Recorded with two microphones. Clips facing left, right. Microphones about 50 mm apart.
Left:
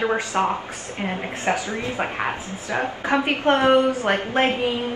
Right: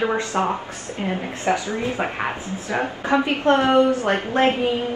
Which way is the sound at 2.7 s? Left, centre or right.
Left.